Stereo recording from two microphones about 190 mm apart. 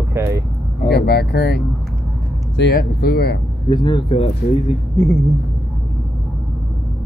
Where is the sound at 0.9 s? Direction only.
60° left (ahead or behind).